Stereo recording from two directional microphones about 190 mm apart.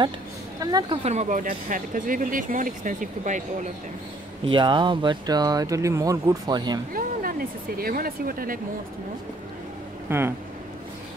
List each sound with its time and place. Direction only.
0.6 s speech: 20° right (ahead or behind)
1.0 s speech: 40° right (ahead or behind)
4.5 s speech: 25° right (ahead or behind)
6.9 s speech: 50° right (ahead or behind)
10.0 s speech: 15° right (ahead or behind)